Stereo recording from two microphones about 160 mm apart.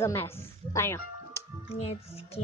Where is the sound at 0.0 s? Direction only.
15° left (ahead or behind).